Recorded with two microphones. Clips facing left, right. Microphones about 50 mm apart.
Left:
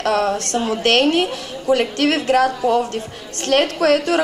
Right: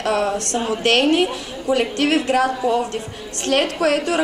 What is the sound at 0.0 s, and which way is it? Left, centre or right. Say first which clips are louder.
A woman's voice: left 2 dB; centre.